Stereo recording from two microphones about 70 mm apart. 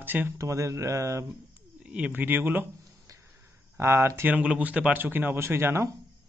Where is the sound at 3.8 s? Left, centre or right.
Right.